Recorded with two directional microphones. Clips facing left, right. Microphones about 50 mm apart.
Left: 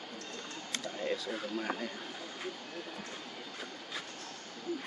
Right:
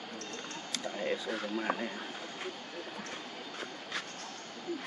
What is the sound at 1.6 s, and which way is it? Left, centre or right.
Speech, right.